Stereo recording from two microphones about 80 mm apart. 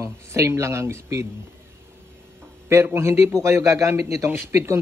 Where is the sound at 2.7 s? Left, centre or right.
Right.